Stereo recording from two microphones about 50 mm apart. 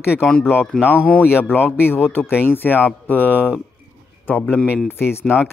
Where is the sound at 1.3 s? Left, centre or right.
Left.